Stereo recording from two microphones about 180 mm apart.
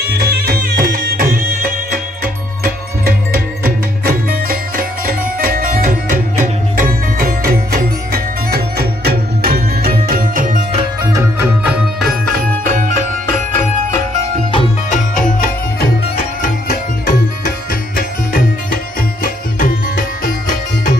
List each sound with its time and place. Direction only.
0.3 s music: 55° right (ahead or behind)
11.1 s music: 15° right (ahead or behind)
12.0 s music: centre (ahead or behind)
12.6 s music: 45° right (ahead or behind)
14.9 s music: 45° left (ahead or behind)
17.9 s music: 55° left (ahead or behind)